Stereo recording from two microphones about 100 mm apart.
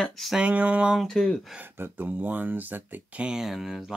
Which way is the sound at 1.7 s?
20° right (ahead or behind).